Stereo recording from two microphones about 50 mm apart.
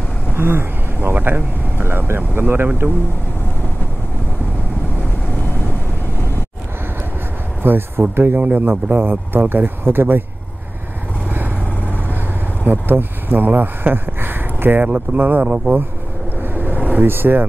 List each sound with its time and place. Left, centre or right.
0.4 s speech: right
1.1 s speech: right
7.6 s speech: right
11.2 s vehicle: right
12.6 s speech: right
15.4 s speech: right
16.5 s vehicle: right
17.0 s speech: right